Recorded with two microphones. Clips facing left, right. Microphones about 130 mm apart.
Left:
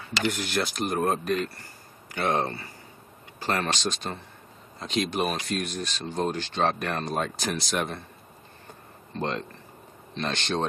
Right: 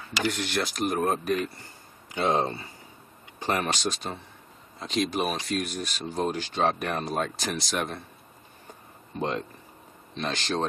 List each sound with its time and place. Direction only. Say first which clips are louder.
0.1 s speech: even; centre (ahead or behind)
9.1 s speech: right 1 dB; 5° right (ahead or behind)